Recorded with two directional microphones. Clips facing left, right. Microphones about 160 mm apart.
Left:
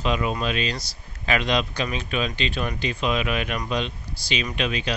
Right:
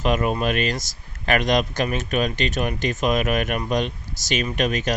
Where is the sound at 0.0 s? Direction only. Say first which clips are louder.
Right 3 dB; 50° right (ahead or behind).